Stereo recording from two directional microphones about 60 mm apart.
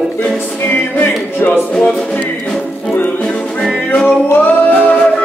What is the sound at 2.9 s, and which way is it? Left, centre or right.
Music, left.